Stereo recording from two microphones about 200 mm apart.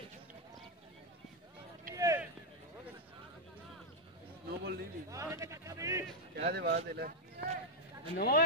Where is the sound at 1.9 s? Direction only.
15° right (ahead or behind).